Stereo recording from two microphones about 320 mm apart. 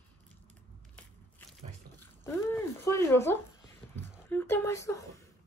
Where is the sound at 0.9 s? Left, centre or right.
Centre.